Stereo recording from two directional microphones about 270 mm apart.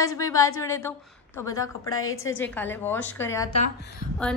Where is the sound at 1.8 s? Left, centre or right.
Left.